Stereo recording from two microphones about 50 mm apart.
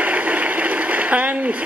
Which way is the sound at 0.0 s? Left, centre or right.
Right.